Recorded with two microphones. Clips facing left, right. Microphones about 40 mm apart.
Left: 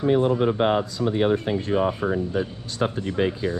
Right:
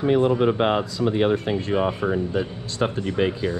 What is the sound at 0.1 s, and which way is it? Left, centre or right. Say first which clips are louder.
Speech: right 2 dB; right.